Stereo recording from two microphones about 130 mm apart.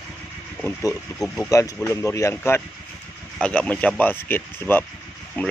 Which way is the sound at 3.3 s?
10° left (ahead or behind).